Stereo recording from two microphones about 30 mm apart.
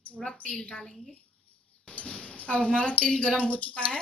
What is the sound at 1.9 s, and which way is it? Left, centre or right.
A woman's voice, left.